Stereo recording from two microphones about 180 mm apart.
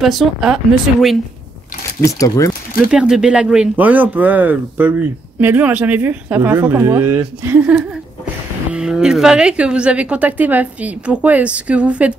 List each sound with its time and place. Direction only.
0.0 s speech: centre (ahead or behind)
2.0 s speech: 15° left (ahead or behind)
2.8 s a woman's voice: 5° right (ahead or behind)